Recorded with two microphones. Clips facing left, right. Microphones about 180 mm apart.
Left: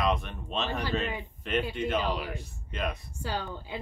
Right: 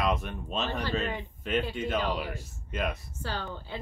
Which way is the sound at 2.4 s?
5° right (ahead or behind).